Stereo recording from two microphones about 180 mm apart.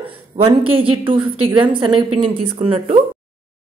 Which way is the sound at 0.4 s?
30° right (ahead or behind).